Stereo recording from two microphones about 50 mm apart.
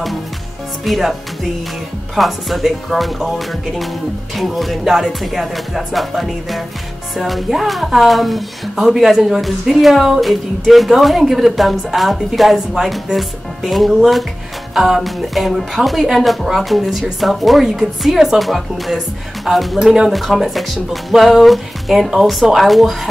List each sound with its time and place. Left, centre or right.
0.8 s speech: centre
4.8 s speech: centre
19.8 s speech: centre
20.1 s speech: centre